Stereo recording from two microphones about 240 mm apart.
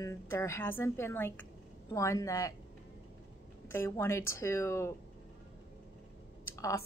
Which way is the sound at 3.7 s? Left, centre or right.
Centre.